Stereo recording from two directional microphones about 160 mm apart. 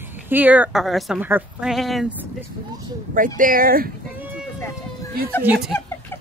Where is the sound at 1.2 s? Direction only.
10° right (ahead or behind).